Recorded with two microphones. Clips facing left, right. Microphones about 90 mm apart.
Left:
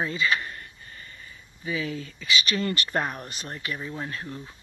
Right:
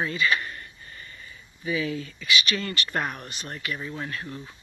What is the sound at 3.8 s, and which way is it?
Speech, 15° left (ahead or behind).